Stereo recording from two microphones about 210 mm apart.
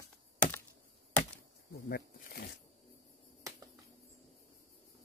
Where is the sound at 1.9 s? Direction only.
50° left (ahead or behind).